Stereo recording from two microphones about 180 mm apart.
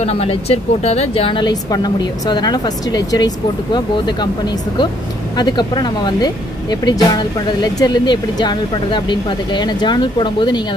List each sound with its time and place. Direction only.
0.0 s speech: 35° left (ahead or behind)
5.3 s speech: 25° left (ahead or behind)